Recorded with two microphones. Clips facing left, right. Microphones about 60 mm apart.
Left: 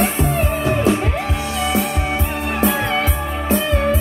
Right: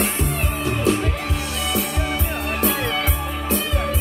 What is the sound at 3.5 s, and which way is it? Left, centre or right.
Music, left.